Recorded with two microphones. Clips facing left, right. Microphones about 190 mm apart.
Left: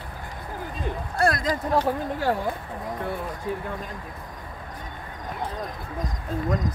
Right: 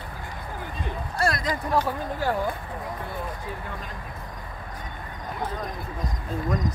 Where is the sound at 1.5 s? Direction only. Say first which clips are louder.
Left 2 dB; 30° left (ahead or behind).